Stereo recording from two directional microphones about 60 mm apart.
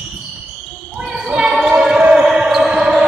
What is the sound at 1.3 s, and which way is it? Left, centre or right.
Basketball bounce, centre.